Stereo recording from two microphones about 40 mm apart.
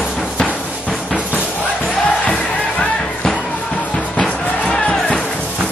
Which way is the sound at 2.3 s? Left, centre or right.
Centre.